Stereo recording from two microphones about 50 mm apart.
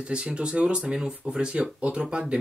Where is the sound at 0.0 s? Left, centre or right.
Right.